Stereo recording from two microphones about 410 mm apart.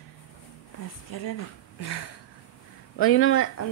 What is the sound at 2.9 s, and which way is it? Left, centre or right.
Speech, left.